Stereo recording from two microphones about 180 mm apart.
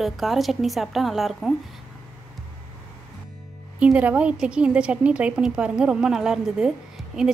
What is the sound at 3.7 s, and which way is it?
Speech, 10° right (ahead or behind).